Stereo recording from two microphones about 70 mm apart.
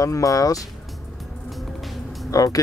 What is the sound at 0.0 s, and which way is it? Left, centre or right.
Speech, left.